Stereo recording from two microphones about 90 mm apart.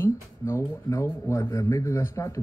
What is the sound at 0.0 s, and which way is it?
Speech, 30° left (ahead or behind).